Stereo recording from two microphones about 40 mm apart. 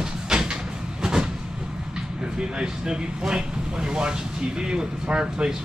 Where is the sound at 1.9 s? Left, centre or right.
Right.